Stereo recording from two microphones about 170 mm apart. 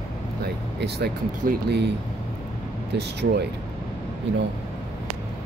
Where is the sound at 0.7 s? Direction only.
75° right (ahead or behind).